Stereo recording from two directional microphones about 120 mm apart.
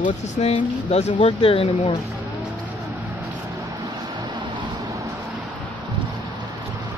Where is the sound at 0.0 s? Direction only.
75° left (ahead or behind).